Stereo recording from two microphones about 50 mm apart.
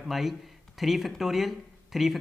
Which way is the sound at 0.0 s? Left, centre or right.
Centre.